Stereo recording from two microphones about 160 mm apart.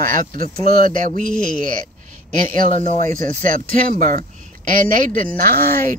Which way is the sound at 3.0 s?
55° right (ahead or behind).